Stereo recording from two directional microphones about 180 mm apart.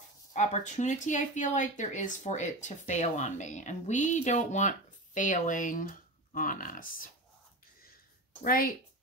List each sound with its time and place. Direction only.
0.3 s speech: 40° left (ahead or behind)